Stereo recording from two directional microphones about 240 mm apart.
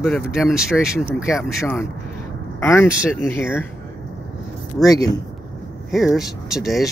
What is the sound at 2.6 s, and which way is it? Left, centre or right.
Speech, centre.